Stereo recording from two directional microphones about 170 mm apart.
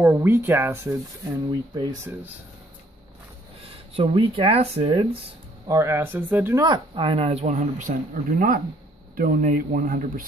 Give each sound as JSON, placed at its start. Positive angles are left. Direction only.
{"t": 0.0, "sound": "speech", "side_deg": -10}
{"t": 3.9, "sound": "speech", "side_deg": -30}
{"t": 5.7, "sound": "speech", "side_deg": -15}
{"t": 6.6, "sound": "speech", "side_deg": -25}